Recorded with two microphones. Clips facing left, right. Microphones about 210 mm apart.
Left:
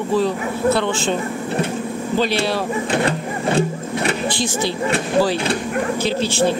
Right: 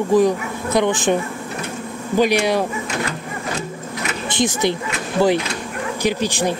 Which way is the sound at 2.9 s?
30° left (ahead or behind).